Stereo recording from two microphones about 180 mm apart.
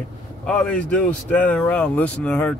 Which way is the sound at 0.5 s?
5° left (ahead or behind).